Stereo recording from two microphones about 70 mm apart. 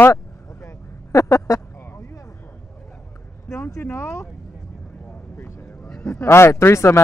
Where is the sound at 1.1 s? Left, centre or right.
Left.